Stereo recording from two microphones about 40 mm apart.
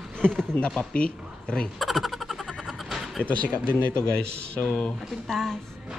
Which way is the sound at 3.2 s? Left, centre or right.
Right.